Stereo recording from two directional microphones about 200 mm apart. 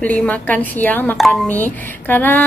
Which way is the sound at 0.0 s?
10° left (ahead or behind).